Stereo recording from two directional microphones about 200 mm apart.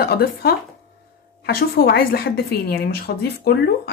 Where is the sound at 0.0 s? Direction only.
50° left (ahead or behind).